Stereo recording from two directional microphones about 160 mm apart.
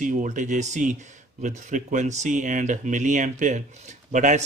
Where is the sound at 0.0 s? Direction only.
55° right (ahead or behind).